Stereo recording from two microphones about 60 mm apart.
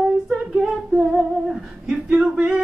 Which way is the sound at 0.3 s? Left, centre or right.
Centre.